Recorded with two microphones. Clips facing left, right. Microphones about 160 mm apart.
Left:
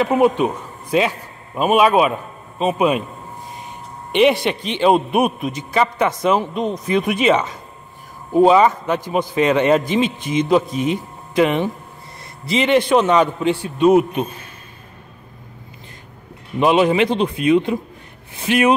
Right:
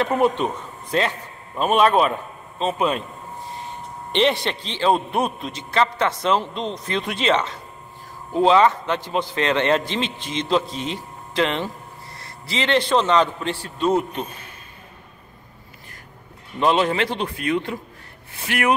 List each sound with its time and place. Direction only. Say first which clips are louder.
0.0 s a man's voice: left 4 dB; 10° left (ahead or behind)
16.5 s a man's voice: left 5 dB; 15° left (ahead or behind)